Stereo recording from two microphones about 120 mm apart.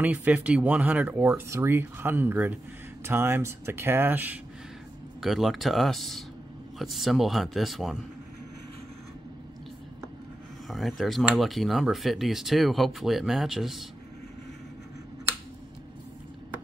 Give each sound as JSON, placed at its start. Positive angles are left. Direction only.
{"t": 0.0, "sound": "speech", "side_deg": -10}
{"t": 5.2, "sound": "speech", "side_deg": 0}
{"t": 10.7, "sound": "speech", "side_deg": 0}